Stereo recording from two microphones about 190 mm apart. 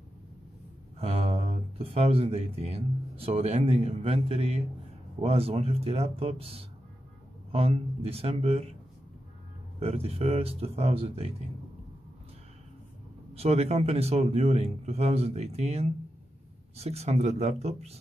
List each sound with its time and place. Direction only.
0.9 s speech: 30° right (ahead or behind)
9.8 s speech: 30° right (ahead or behind)
13.3 s speech: 35° right (ahead or behind)